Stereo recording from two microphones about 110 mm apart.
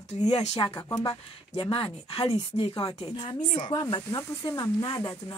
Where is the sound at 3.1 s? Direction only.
40° left (ahead or behind).